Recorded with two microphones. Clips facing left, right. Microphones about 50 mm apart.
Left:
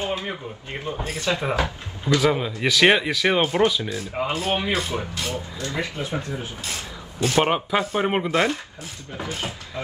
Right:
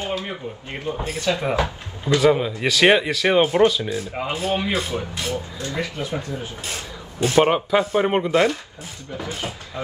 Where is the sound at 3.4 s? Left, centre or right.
Centre.